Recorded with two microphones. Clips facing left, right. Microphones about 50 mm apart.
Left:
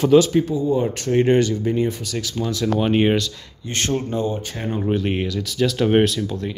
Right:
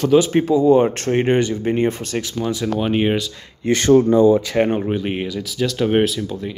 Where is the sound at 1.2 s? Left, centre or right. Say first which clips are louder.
Left 1 dB; right.